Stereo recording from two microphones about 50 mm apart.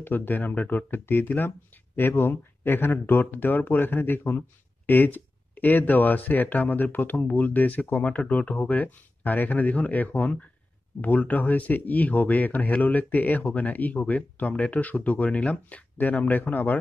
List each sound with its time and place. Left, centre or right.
0.0 s speech: left